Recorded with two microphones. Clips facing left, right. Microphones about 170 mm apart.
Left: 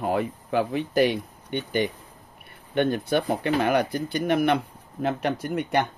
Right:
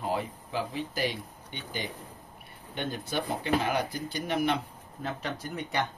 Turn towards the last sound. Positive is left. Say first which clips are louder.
# left 7 dB
turn(degrees=60)  # may be behind; listen again after turning